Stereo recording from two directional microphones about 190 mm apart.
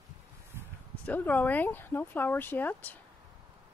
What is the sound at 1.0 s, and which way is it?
Speech, 10° left (ahead or behind).